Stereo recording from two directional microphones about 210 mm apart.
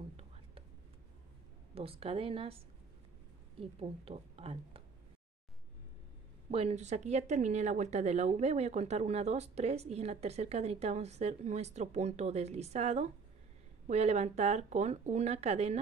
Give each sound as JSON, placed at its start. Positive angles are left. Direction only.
{"t": 1.8, "sound": "a woman's voice", "side_deg": -25}
{"t": 6.5, "sound": "speech", "side_deg": -30}